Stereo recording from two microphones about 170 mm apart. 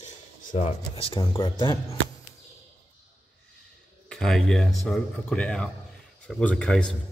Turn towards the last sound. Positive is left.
turn(degrees=5)  # may be behind; listen again after turning